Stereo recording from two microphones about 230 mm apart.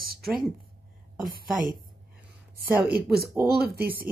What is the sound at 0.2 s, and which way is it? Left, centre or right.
Speech, centre.